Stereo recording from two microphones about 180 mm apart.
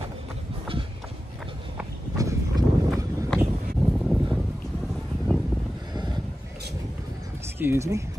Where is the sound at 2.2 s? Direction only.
20° right (ahead or behind).